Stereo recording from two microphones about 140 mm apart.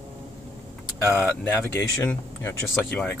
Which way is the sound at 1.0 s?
15° left (ahead or behind).